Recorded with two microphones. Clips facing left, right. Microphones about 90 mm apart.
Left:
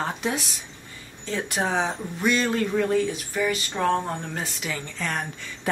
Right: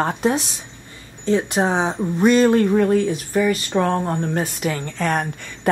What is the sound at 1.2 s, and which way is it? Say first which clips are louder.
Speech: right 8 dB; 25° right (ahead or behind).